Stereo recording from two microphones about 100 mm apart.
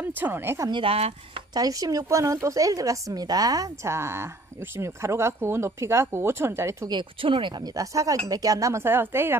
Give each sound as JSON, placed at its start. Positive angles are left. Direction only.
{"t": 0.0, "sound": "speech", "side_deg": -20}
{"t": 0.7, "sound": "speech", "side_deg": -55}
{"t": 0.9, "sound": "speech", "side_deg": -90}
{"t": 1.5, "sound": "speech", "side_deg": -40}
{"t": 6.9, "sound": "speech", "side_deg": -55}
{"t": 7.7, "sound": "speech", "side_deg": -35}